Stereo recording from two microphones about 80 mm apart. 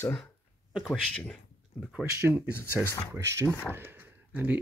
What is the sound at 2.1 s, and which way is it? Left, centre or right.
Speech, right.